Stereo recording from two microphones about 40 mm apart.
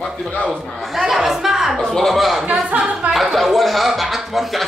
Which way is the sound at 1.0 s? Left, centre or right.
Centre.